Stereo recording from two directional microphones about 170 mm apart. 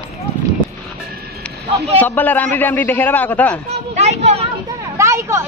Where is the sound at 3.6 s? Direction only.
40° right (ahead or behind).